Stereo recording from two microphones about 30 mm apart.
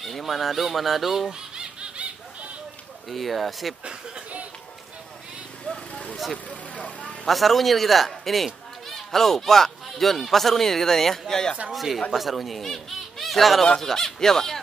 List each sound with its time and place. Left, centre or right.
0.0 s fowl: centre
1.6 s baby laughter: right
3.1 s fowl: centre
6.3 s vehicle: left
7.2 s fowl: centre
8.8 s speech: centre
11.7 s fowl: centre
12.6 s speech: centre
13.7 s speech: centre